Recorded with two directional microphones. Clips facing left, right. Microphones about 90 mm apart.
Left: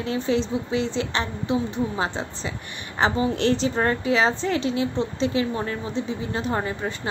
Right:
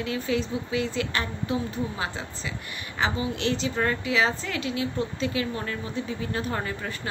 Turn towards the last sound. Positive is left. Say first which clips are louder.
# left 4 dB
turn(degrees=25)  # may be behind; listen again after turning